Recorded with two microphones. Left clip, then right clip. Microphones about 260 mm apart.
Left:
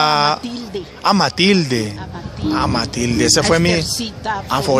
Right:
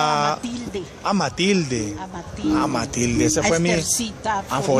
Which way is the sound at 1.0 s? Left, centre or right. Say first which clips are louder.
Left 7 dB; centre.